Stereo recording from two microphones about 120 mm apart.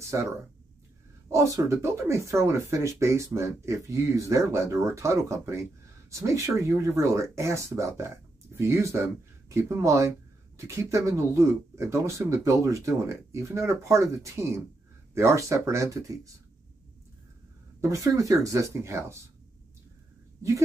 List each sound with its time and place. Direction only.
1.3 s speech: 25° right (ahead or behind)
17.7 s speech: 25° right (ahead or behind)